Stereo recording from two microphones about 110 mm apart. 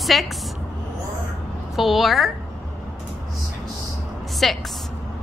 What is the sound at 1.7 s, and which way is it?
Speech, centre (ahead or behind).